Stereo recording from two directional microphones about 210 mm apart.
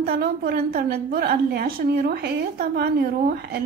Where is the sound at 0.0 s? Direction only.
45° right (ahead or behind).